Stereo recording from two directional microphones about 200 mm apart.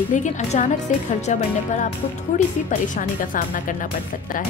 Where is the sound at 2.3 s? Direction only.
35° left (ahead or behind).